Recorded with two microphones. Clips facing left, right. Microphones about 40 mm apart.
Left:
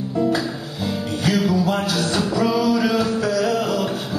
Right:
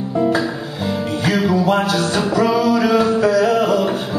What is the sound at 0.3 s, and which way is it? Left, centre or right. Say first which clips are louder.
Music: right 4 dB; centre.